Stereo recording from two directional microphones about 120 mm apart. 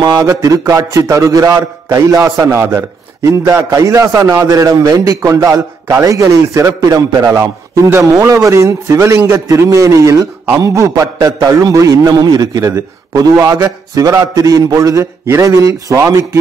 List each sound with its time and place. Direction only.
0.1 s a man's voice: 30° right (ahead or behind)
11.1 s a man's voice: 40° right (ahead or behind)
11.4 s a man's voice: 30° right (ahead or behind)